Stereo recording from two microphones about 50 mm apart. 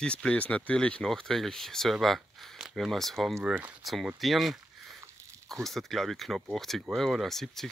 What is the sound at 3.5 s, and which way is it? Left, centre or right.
Speech, right.